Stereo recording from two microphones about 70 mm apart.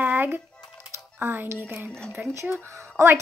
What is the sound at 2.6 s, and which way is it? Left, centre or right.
Speech, right.